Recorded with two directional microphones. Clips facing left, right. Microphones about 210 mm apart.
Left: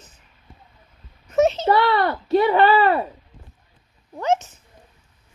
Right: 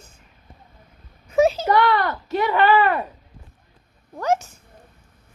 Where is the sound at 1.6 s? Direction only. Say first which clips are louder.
Left 1 dB; 30° left (ahead or behind).